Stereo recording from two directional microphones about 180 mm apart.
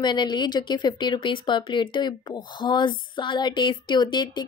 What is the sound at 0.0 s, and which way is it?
A woman's voice, 25° left (ahead or behind).